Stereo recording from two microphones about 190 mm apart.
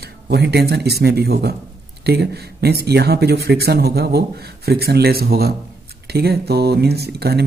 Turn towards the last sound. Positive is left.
turn(degrees=-60)  # may be behind; listen again after turning